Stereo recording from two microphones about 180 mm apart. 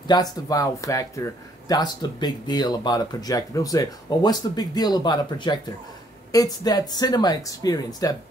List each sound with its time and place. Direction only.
0.0 s speech: 20° left (ahead or behind)